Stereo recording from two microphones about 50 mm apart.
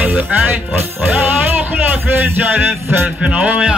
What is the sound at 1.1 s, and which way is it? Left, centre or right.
Music, right.